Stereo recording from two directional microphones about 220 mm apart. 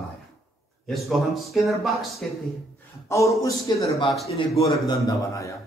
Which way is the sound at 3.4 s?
15° left (ahead or behind).